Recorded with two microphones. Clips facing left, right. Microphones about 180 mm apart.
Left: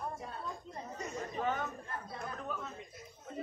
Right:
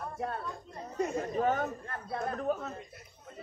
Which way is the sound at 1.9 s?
60° right (ahead or behind).